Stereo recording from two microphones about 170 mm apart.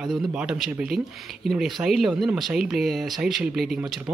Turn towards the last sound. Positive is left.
turn(degrees=0)  # may be behind; listen again after turning